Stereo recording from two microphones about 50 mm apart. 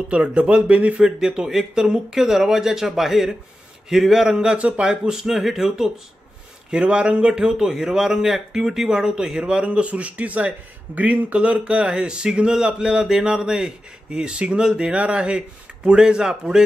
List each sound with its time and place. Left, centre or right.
0.1 s speech: right